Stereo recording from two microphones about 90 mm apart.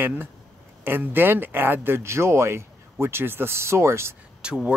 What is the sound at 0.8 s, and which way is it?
Speech, 25° right (ahead or behind).